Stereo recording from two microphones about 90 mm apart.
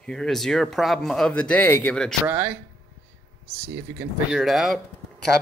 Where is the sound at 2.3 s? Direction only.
25° right (ahead or behind).